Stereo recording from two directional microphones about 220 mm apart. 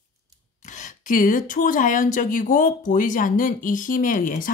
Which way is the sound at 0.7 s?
35° left (ahead or behind).